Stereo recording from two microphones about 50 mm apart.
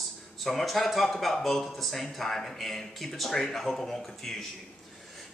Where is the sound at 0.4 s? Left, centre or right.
Centre.